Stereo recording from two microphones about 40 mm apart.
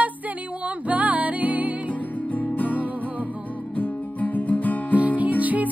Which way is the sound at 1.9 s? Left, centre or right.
Left.